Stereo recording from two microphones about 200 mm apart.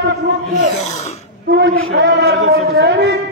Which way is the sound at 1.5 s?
50° right (ahead or behind).